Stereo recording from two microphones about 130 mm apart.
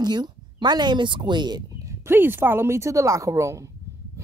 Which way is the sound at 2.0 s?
15° right (ahead or behind).